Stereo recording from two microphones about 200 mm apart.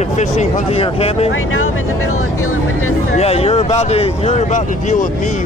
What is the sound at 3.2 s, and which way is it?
Speech, 30° left (ahead or behind).